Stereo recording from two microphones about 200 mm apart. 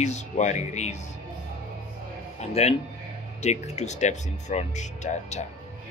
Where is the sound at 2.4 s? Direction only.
30° left (ahead or behind).